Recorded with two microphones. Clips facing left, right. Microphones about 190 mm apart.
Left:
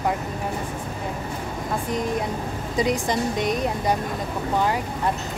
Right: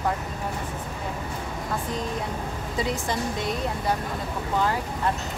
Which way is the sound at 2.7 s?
15° left (ahead or behind).